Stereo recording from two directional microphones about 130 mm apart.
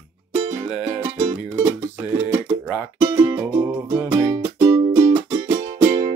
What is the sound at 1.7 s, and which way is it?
Music, 25° right (ahead or behind).